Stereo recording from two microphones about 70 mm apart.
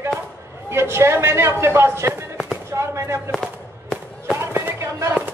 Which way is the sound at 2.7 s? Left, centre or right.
Right.